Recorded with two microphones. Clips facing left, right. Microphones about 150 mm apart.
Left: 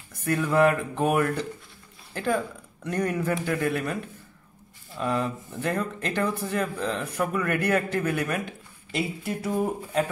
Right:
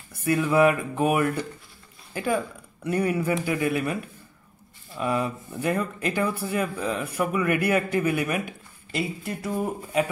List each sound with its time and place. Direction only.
0.2 s speech: 5° right (ahead or behind)
9.0 s a sound: centre (ahead or behind)
9.9 s speech: 10° right (ahead or behind)